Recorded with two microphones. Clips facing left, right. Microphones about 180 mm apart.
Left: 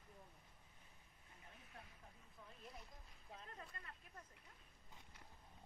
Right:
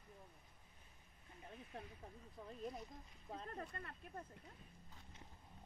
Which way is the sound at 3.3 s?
45° right (ahead or behind).